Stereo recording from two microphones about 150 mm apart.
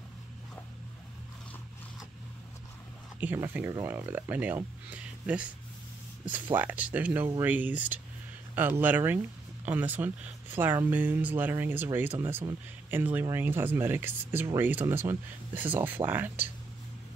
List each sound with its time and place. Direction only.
3.2 s speech: 15° right (ahead or behind)